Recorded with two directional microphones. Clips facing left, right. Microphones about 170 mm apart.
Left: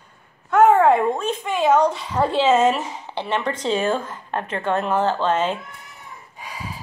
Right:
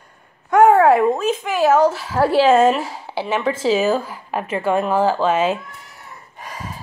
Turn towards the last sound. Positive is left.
turn(degrees=-10)  # may be behind; listen again after turning